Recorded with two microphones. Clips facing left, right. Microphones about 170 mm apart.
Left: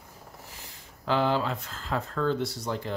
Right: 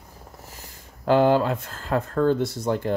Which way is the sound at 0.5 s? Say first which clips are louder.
Right 3 dB; 50° right (ahead or behind).